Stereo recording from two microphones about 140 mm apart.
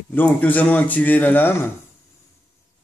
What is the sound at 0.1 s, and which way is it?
Speech, 10° left (ahead or behind).